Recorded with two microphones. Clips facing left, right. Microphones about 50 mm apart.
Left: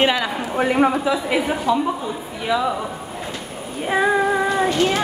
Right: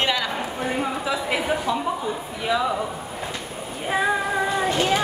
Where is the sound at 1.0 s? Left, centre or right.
Centre.